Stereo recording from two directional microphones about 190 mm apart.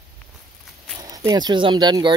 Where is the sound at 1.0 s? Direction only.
20° right (ahead or behind).